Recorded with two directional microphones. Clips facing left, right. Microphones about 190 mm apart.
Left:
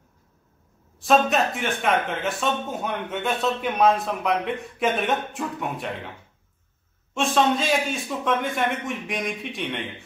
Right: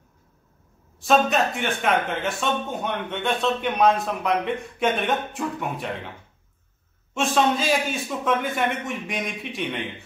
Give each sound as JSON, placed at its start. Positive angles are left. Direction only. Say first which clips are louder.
{"t": 0.9, "sound": "a man's voice", "louder": "even", "side_deg": 0}
{"t": 7.2, "sound": "a man's voice", "louder": "even", "side_deg": 0}